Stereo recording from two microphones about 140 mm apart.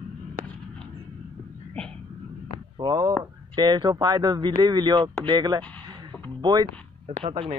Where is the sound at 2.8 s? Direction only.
25° right (ahead or behind).